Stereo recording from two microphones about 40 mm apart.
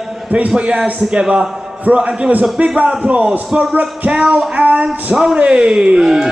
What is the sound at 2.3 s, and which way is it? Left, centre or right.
Music, right.